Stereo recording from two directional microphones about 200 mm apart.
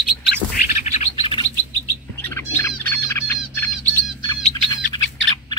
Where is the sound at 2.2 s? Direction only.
10° left (ahead or behind).